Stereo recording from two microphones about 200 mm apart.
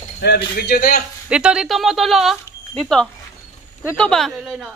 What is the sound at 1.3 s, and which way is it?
Speech, 5° right (ahead or behind).